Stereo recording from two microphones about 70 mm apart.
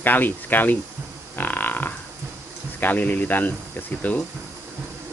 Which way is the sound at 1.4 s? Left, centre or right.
Left.